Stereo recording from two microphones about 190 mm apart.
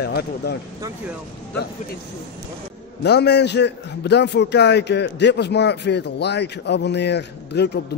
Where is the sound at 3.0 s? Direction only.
60° left (ahead or behind).